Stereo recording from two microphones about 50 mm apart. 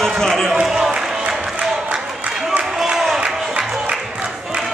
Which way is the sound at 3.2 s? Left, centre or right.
Right.